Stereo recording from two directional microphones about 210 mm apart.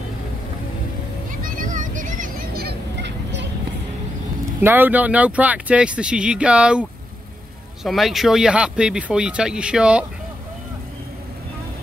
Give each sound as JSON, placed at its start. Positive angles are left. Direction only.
{"t": 1.4, "sound": "vehicle", "side_deg": -40}
{"t": 4.6, "sound": "speech", "side_deg": -10}